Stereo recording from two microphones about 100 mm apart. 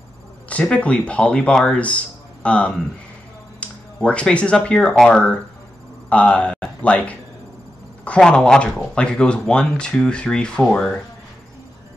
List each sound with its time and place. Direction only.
0.5 s speech: 15° left (ahead or behind)